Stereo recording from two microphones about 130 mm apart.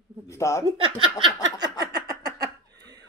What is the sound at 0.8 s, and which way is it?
Speech, 40° right (ahead or behind).